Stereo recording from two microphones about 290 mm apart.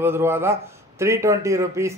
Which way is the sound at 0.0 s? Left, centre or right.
Centre.